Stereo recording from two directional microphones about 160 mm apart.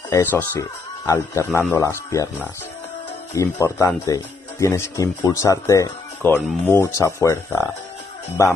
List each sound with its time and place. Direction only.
0.1 s speech: 10° left (ahead or behind)